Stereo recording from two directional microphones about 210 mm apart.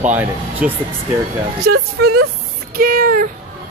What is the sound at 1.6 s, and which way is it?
Speech, 45° right (ahead or behind).